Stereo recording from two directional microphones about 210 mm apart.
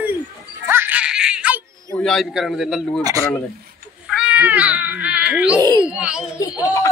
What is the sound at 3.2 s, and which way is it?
Speech, 10° left (ahead or behind).